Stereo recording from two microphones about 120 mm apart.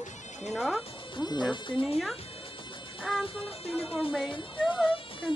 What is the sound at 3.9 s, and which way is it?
Speech, centre (ahead or behind).